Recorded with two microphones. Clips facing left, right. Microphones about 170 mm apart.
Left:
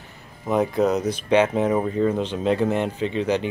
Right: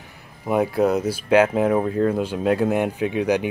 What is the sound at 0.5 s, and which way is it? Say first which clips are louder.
Speech: right 1 dB; 10° right (ahead or behind).